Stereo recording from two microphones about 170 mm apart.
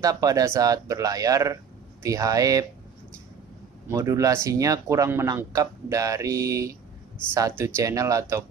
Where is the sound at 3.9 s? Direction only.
20° right (ahead or behind).